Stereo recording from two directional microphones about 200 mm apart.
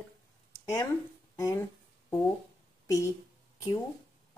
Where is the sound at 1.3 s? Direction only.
15° left (ahead or behind).